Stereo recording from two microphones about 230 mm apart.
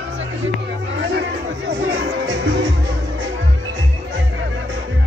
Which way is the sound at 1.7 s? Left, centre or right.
Right.